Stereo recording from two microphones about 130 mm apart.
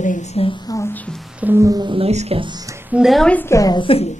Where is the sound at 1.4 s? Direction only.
15° right (ahead or behind).